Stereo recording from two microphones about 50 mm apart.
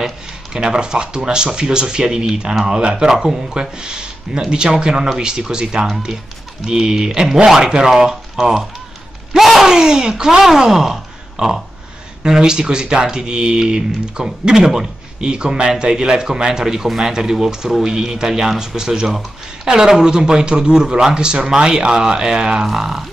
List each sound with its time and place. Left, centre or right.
0.5 s speech: centre